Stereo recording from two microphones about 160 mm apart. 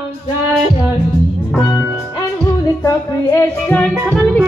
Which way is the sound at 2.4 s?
20° left (ahead or behind).